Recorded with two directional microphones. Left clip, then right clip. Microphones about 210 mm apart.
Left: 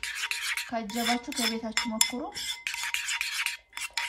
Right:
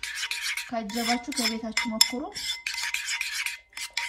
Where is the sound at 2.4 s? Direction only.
15° left (ahead or behind).